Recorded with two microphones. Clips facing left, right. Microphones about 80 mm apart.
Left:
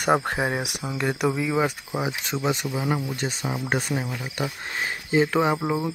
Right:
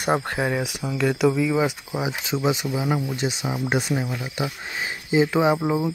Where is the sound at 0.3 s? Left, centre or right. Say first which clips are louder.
Right 1 dB; left.